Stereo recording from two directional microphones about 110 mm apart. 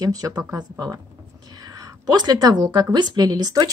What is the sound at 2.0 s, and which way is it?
A woman's voice, 35° right (ahead or behind).